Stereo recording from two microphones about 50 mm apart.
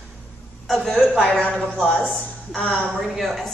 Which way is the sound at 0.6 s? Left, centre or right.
Centre.